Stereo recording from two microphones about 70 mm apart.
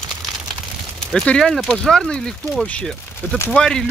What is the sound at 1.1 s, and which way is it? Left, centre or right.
Speech, centre.